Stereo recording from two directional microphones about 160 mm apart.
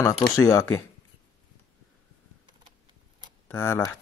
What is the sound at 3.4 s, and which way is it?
Speech, 15° left (ahead or behind).